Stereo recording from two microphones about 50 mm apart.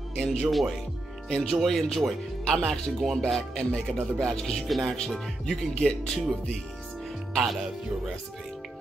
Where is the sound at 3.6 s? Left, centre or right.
Centre.